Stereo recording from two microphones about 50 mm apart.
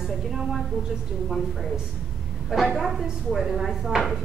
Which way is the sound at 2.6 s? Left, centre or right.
Centre.